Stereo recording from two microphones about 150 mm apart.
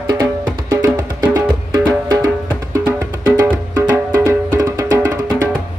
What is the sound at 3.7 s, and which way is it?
Music, 20° right (ahead or behind).